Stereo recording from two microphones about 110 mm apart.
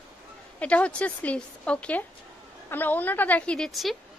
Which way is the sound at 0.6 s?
10° left (ahead or behind).